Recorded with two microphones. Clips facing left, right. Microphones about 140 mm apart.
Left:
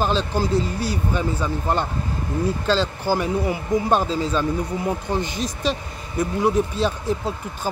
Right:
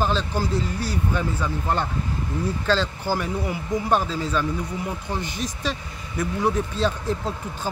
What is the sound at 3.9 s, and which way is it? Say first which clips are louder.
Speech: even; 20° left (ahead or behind).